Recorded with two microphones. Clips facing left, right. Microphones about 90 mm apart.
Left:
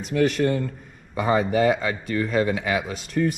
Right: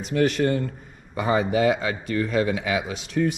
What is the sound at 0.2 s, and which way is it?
Speech, 45° right (ahead or behind).